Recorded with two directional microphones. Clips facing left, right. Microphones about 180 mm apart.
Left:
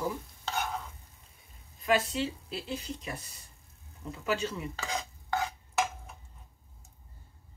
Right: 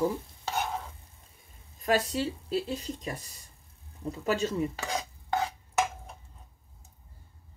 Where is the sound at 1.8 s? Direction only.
40° right (ahead or behind).